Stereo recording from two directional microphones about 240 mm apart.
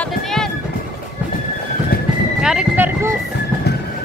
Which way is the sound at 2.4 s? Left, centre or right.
Centre.